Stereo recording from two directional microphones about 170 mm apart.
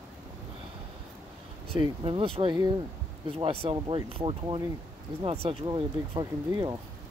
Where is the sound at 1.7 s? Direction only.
30° right (ahead or behind).